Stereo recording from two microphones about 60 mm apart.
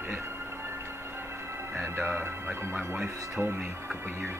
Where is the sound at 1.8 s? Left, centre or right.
Right.